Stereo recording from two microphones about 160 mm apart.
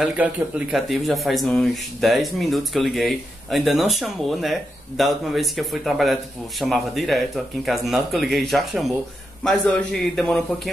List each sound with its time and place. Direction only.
0.0 s speech: 5° right (ahead or behind)